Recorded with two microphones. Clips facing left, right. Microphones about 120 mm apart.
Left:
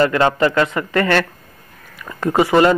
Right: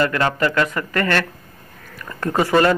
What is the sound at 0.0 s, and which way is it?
A man's voice, 25° left (ahead or behind).